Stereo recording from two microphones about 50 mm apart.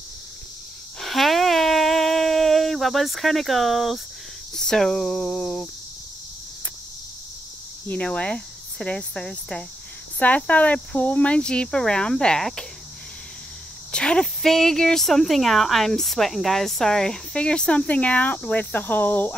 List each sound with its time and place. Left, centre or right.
1.0 s a sound: centre
4.6 s speech: centre
8.1 s speech: left
13.9 s speech: centre
14.2 s speech: centre; by 18.4 s left
18.5 s cricket: left